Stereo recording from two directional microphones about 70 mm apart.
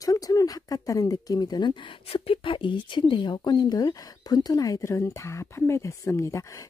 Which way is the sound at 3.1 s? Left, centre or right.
Left.